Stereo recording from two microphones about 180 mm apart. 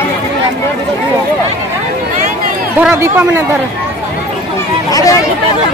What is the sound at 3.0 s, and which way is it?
Speech, 10° right (ahead or behind).